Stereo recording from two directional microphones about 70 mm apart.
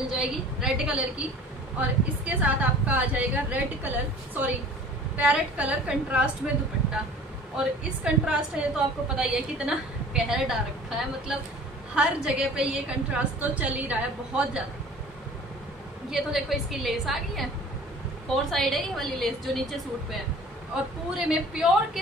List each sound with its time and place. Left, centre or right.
0.2 s a woman's voice: centre
16.1 s a woman's voice: centre
20.7 s a woman's voice: centre